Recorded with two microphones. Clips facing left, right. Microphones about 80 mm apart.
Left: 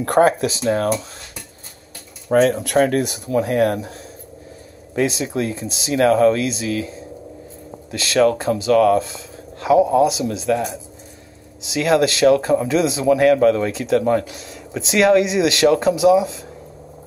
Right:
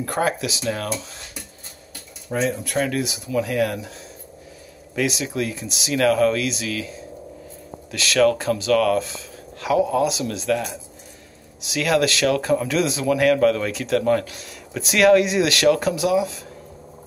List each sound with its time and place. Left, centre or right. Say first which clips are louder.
0.2 s speech: left 8 dB; left
2.2 s speech: left 8 dB; left
2.8 s speech: left 6 dB; left
4.9 s speech: left 3 dB; left
7.9 s speech: left 2 dB; left